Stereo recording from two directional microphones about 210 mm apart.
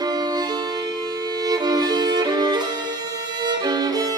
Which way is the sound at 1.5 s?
20° right (ahead or behind).